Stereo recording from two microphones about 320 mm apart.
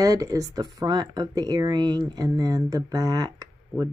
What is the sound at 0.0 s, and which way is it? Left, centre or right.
Speech, centre.